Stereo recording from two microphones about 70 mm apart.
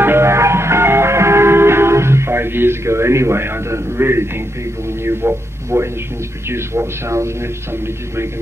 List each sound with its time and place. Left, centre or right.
0.0 s music: right
5.0 s a man's voice: right